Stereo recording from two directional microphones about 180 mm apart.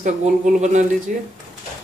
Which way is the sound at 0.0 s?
40° right (ahead or behind).